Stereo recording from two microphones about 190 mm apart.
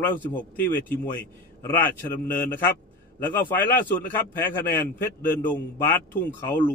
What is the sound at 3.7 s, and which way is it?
Speech, 50° left (ahead or behind).